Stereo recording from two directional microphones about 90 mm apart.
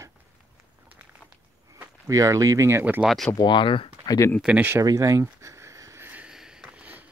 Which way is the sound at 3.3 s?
55° left (ahead or behind).